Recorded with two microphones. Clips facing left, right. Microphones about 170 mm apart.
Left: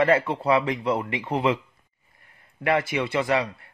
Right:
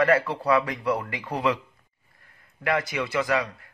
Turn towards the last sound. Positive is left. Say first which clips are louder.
# left 2 dB
turn(degrees=25)  # may be behind; listen again after turning